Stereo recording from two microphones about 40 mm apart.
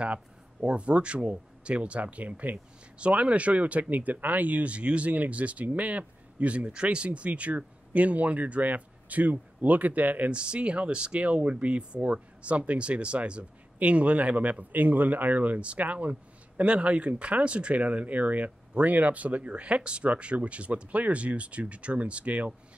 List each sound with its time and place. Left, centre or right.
0.0 s speech: right
10.3 s speech: right